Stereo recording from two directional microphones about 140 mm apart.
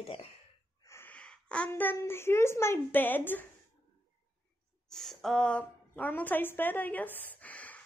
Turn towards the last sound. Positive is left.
turn(degrees=10)  # may be behind; listen again after turning